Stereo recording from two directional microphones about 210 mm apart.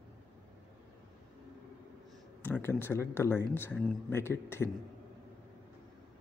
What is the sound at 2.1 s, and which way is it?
A man's voice, 10° left (ahead or behind).